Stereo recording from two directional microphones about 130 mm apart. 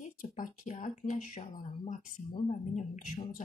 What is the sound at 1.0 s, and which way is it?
Speech, 90° left.